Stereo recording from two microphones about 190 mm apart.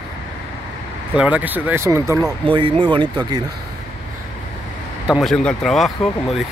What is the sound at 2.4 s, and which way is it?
Speech, 25° right (ahead or behind).